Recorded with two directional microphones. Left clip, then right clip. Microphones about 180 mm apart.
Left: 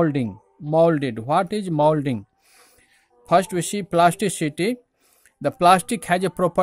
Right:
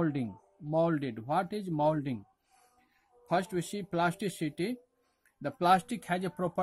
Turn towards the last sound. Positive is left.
turn(degrees=40)  # may be behind; listen again after turning